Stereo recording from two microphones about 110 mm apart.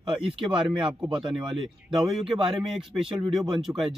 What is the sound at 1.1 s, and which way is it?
Speech, 45° right (ahead or behind).